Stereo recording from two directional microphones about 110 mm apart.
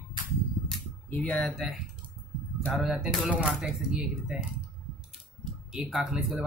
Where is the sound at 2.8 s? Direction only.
Centre (ahead or behind).